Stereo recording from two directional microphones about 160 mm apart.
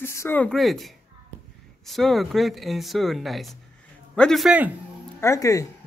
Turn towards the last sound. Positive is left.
turn(degrees=20)  # may be behind; listen again after turning